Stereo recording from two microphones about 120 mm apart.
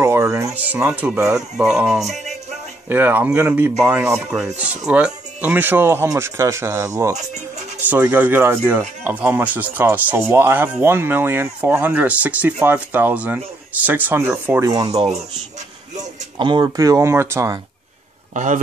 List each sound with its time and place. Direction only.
0.0 s speech: 25° right (ahead or behind)
0.8 s speech: 10° right (ahead or behind)
2.9 s speech: 15° right (ahead or behind)
4.3 s speech: 5° right (ahead or behind); by 7.2 s 25° right (ahead or behind)
7.2 s music: 70° right (ahead or behind)
7.9 s speech: 15° right (ahead or behind)
14.6 s speech: 30° right (ahead or behind)
15.0 s speech: 60° right (ahead or behind)
16.0 s speech: 40° right (ahead or behind); by 17.6 s 25° right (ahead or behind)
18.3 s speech: 90° right